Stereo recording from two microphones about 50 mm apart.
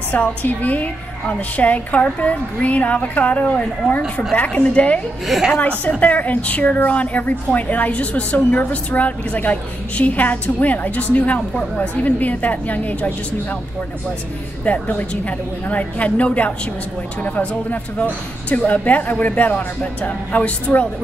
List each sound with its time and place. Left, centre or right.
0.1 s a woman's voice: left
5.2 s a woman's voice: centre
5.5 s a woman's voice: left
14.6 s a woman's voice: left